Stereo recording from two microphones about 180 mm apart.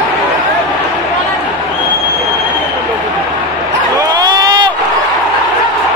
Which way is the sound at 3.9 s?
20° right (ahead or behind).